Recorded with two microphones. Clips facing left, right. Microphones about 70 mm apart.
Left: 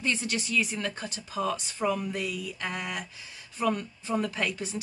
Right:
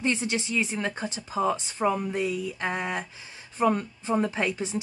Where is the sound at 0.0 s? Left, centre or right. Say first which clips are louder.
Right 3 dB; right.